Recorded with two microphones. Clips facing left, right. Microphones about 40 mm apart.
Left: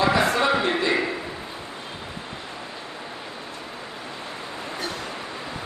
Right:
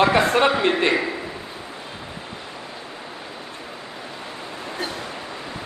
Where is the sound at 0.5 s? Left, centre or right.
Right.